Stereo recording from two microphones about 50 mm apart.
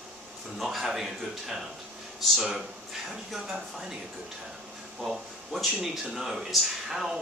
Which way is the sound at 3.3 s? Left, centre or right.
Centre.